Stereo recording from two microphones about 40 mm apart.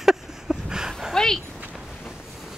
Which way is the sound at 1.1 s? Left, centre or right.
Centre.